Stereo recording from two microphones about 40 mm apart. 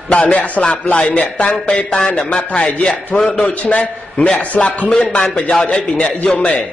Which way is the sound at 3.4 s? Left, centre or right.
Left.